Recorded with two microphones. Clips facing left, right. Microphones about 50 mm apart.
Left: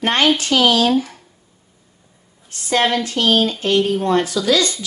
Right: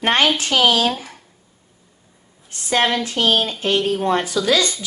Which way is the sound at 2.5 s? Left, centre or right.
Right.